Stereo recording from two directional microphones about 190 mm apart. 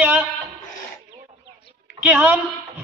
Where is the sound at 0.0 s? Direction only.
10° right (ahead or behind).